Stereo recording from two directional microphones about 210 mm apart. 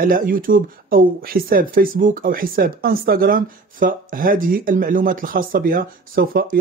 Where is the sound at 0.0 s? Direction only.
40° right (ahead or behind).